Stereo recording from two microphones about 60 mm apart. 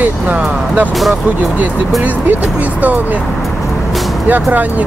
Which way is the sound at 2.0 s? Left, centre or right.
Right.